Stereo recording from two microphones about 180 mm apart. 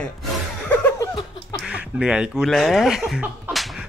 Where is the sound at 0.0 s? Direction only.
10° left (ahead or behind).